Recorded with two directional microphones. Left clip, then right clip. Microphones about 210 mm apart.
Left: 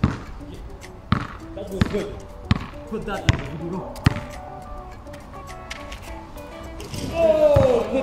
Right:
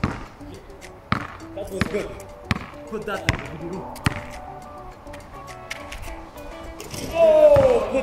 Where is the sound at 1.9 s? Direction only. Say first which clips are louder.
Even; 20° right (ahead or behind).